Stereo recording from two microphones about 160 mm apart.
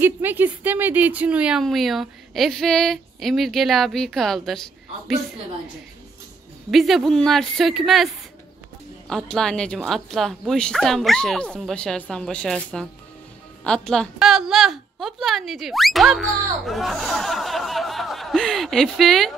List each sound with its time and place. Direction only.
0.0 s speech: 10° right (ahead or behind)
6.7 s speech: centre (ahead or behind)